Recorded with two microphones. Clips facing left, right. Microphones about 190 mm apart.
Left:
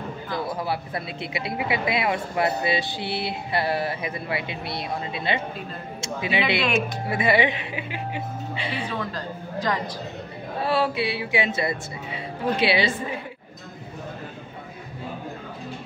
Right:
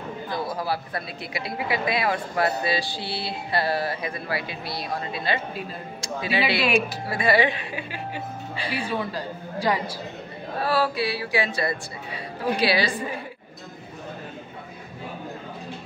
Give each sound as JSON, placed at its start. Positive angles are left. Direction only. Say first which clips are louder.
{"t": 0.7, "sound": "speech", "louder": "even", "side_deg": 25}
{"t": 8.8, "sound": "a woman's voice", "louder": "right 2 dB", "side_deg": -10}
{"t": 10.6, "sound": "speech", "louder": "even", "side_deg": 25}